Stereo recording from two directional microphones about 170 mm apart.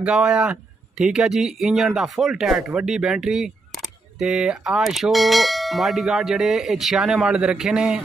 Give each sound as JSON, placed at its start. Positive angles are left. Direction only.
{"t": 0.0, "sound": "speech", "side_deg": -5}